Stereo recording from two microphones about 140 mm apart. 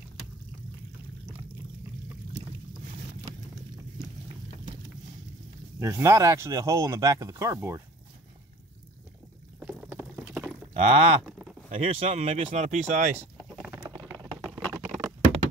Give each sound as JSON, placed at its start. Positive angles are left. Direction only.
{"t": 5.8, "sound": "speech", "side_deg": -20}
{"t": 9.6, "sound": "boat", "side_deg": -15}
{"t": 10.4, "sound": "cattle", "side_deg": 0}
{"t": 10.7, "sound": "speech", "side_deg": -45}
{"t": 13.7, "sound": "a sound", "side_deg": -25}
{"t": 14.8, "sound": "patter", "side_deg": -20}